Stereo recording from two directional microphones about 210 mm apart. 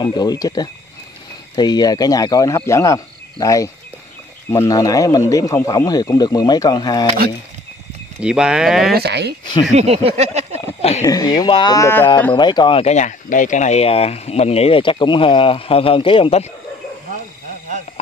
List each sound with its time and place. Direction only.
0.0 s speech: 20° left (ahead or behind)
8.2 s speech: 5° right (ahead or behind)
8.9 s speech: 50° right (ahead or behind)
9.8 s speech: 30° right (ahead or behind)
11.0 s speech: 15° left (ahead or behind)